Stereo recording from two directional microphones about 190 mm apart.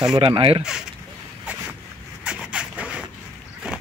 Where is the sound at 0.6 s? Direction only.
5° right (ahead or behind).